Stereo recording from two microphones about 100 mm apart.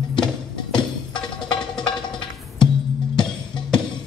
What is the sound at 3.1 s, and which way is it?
Music, 5° left (ahead or behind).